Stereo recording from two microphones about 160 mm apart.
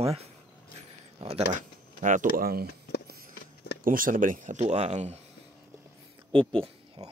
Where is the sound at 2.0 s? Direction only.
55° right (ahead or behind).